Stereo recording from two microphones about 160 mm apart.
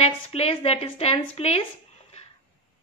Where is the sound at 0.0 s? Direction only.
40° left (ahead or behind).